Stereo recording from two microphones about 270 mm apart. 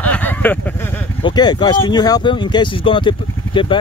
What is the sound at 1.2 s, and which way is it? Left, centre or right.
Speech, centre.